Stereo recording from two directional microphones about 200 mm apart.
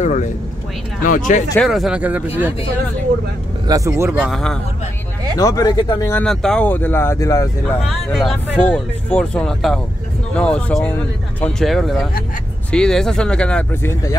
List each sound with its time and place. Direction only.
0.0 s speech: 35° left (ahead or behind)
1.7 s speech: 5° right (ahead or behind)
3.6 s speech: 15° right (ahead or behind)
4.3 s speech: 5° left (ahead or behind)
5.4 s speech: 15° left (ahead or behind)
6.2 s speech: 5° left (ahead or behind)
7.8 s speech: centre (ahead or behind)